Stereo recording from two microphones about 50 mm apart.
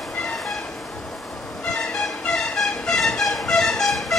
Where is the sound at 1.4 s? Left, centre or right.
Centre.